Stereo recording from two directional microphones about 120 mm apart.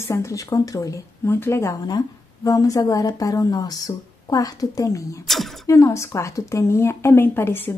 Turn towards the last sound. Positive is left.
turn(degrees=20)  # may be behind; listen again after turning